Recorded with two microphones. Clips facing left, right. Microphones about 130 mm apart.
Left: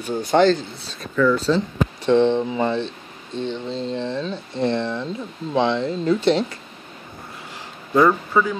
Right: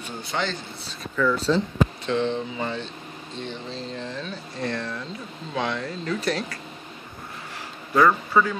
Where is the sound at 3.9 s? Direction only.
25° left (ahead or behind).